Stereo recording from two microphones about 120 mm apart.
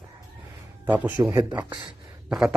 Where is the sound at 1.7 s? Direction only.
35° right (ahead or behind).